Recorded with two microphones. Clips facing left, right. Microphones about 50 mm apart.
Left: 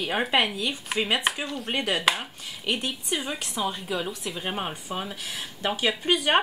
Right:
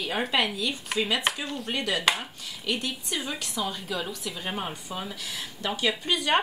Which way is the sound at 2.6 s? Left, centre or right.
Left.